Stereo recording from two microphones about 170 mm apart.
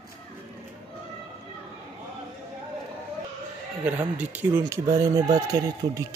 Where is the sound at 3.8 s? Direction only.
10° right (ahead or behind).